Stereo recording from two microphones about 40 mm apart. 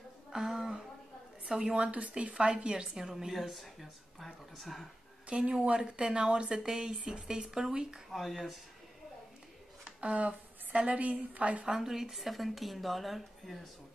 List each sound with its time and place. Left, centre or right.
0.3 s a sound: centre
1.4 s speech: right
3.0 s speech: centre
3.3 s speech: centre
5.3 s speech: right
8.1 s speech: centre
9.8 s a sound: right
10.9 s a woman's voice: right
11.6 s speech: centre